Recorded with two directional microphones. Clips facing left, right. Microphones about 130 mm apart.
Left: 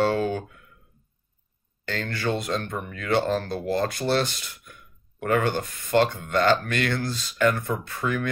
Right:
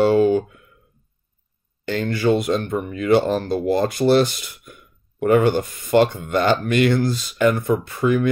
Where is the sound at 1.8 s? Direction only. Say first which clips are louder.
Right 8 dB; 15° right (ahead or behind).